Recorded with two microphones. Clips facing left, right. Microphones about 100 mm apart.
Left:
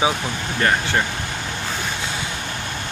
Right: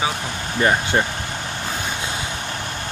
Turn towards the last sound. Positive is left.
turn(degrees=-20)  # may be behind; listen again after turning